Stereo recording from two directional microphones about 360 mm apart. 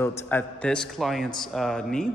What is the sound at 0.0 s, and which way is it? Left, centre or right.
A man's voice, centre.